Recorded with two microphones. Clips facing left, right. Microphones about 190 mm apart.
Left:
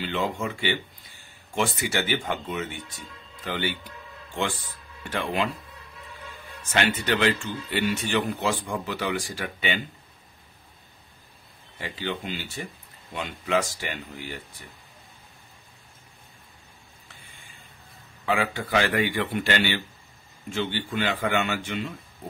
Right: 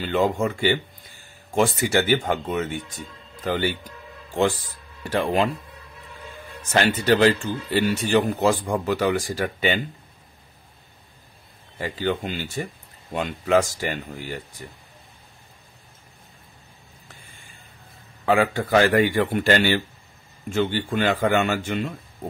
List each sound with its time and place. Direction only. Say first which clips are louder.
0.0 s a man's voice: right 6 dB; 45° right (ahead or behind)
6.7 s speech: right 5 dB; 35° right (ahead or behind)
11.8 s a man's voice: right 6 dB; 45° right (ahead or behind)
18.2 s a man's voice: right 6 dB; 45° right (ahead or behind)